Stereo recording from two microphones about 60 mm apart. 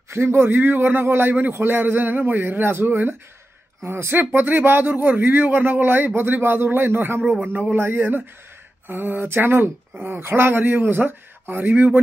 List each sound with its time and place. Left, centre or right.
0.1 s speech: right